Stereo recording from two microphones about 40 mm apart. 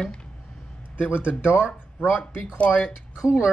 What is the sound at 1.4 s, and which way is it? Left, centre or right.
Speech, right.